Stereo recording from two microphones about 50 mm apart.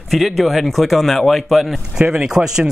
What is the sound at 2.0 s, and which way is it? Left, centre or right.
Speech, centre.